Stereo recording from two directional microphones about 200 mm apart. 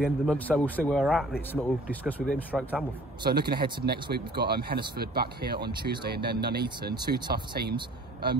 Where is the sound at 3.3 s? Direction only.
50° right (ahead or behind).